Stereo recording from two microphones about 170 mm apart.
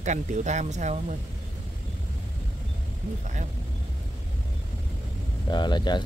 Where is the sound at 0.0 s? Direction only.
45° right (ahead or behind).